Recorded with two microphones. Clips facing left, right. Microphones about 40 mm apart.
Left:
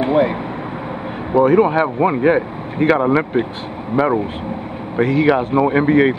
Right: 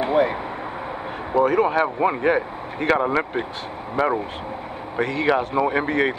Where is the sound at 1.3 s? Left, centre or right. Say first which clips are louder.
Left 6 dB; centre.